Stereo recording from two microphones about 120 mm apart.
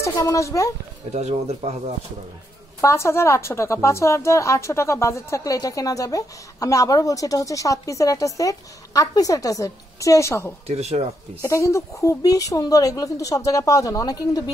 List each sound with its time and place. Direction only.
0.2 s a woman's voice: 25° left (ahead or behind)
1.1 s speech: 65° right (ahead or behind)
2.8 s a woman's voice: 25° left (ahead or behind)
10.7 s speech: 65° right (ahead or behind)
11.4 s a woman's voice: 25° left (ahead or behind)